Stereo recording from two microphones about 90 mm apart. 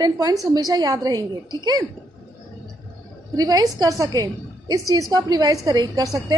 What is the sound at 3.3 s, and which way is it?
A woman's voice, 45° right (ahead or behind).